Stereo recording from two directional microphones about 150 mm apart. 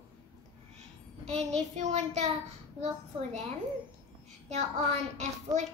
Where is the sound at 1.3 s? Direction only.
50° right (ahead or behind).